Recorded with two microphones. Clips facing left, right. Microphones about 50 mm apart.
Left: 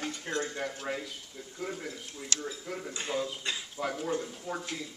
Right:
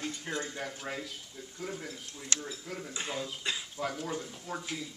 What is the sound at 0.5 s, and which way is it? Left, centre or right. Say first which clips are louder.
Speech: left 3 dB; centre.